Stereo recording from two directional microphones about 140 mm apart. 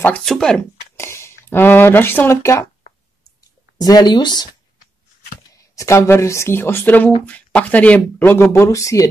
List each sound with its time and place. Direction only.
0.0 s speech: 5° left (ahead or behind)
0.9 s a sound: 20° left (ahead or behind)
1.5 s speech: 15° left (ahead or behind)
3.7 s speech: 30° left (ahead or behind)
5.6 s speech: 20° left (ahead or behind)